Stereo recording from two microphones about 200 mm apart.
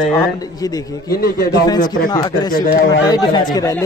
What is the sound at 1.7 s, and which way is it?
Speech, 20° left (ahead or behind).